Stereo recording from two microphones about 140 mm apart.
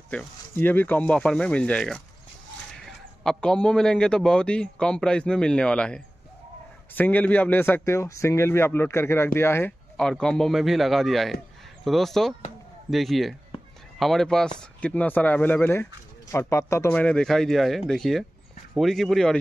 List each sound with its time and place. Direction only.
0.1 s speech: 10° left (ahead or behind)
3.3 s speech: 5° left (ahead or behind)
9.9 s speech: 5° left (ahead or behind)
16.9 s speech: 5° left (ahead or behind)